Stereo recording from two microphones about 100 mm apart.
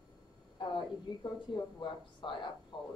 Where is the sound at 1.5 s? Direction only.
60° left (ahead or behind).